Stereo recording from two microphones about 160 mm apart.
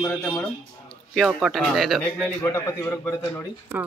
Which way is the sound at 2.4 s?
15° left (ahead or behind).